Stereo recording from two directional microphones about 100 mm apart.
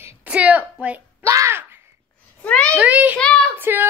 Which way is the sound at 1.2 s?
30° right (ahead or behind).